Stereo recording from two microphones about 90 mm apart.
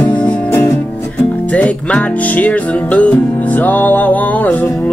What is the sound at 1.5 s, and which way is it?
Music, 15° left (ahead or behind).